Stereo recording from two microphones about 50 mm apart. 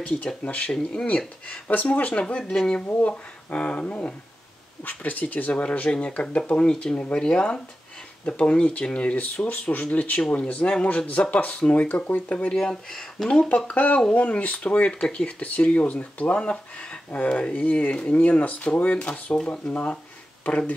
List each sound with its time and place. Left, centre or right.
0.4 s speech: left
2.9 s speech: left
12.5 s speech: centre
13.7 s speech: left
14.9 s speech: centre